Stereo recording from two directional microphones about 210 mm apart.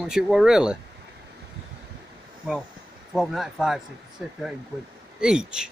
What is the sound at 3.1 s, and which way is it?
Speech, centre (ahead or behind).